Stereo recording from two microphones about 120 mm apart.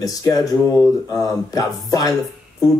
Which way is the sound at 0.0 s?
30° left (ahead or behind).